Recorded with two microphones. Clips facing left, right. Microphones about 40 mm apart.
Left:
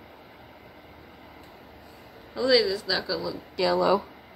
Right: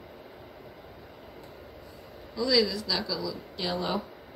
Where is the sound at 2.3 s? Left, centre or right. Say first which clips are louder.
Left 4 dB; left.